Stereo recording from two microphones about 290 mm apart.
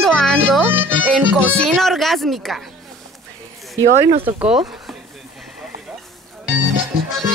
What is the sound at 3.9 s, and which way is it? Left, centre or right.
Speech, right.